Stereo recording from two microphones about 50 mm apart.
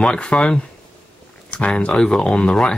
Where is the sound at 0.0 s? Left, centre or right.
Centre.